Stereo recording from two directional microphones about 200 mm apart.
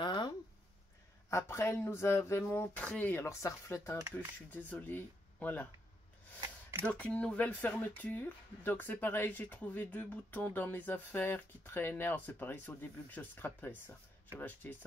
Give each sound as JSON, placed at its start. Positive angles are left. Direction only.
{"t": 0.0, "sound": "a sound", "side_deg": 20}
{"t": 1.3, "sound": "speech", "side_deg": 15}
{"t": 6.9, "sound": "speech", "side_deg": 5}